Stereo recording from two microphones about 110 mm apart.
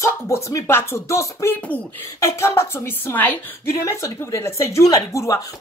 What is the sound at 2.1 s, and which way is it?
A woman's voice, 30° left (ahead or behind).